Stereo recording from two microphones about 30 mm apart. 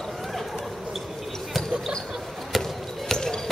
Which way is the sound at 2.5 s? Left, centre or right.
Centre.